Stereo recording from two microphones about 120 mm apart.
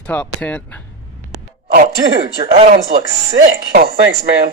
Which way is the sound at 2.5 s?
70° right (ahead or behind).